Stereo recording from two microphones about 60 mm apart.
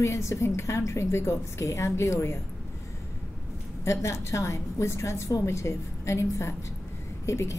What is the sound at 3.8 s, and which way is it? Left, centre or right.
Speech, left.